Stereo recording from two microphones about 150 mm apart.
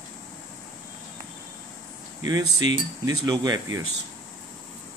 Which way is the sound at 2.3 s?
25° right (ahead or behind).